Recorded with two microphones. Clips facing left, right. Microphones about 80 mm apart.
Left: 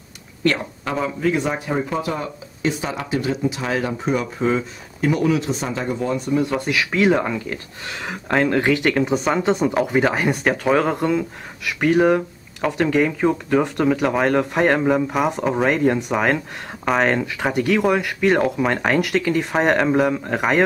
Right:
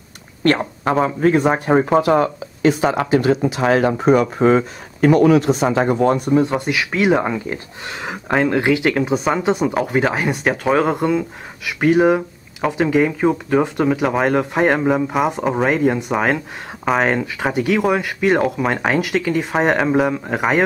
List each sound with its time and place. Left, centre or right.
0.6 s speech: right
2.0 s speech: right
6.5 s speech: centre